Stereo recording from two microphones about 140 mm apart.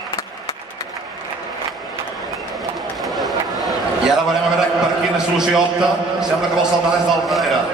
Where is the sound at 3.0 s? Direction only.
Centre (ahead or behind).